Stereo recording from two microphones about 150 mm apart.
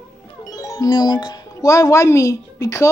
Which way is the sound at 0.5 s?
25° left (ahead or behind).